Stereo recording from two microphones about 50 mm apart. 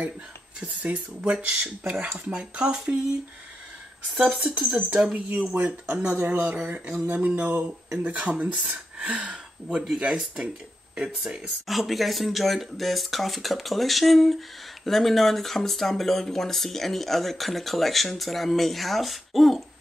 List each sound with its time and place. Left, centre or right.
0.6 s speech: right
4.2 s speech: centre
6.1 s speech: right; by 10.5 s centre
11.6 s speech: centre